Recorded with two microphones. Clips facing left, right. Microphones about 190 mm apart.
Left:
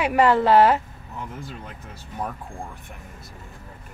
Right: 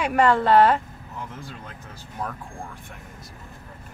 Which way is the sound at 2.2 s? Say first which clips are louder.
Left 1 dB; 20° left (ahead or behind).